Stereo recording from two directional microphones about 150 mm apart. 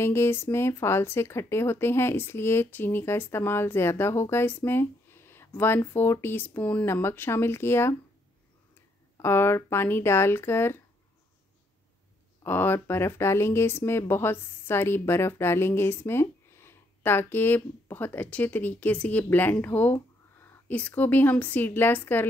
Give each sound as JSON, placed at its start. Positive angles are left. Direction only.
{"t": 0.0, "sound": "speech", "side_deg": 15}
{"t": 9.2, "sound": "speech", "side_deg": 15}
{"t": 12.4, "sound": "speech", "side_deg": 15}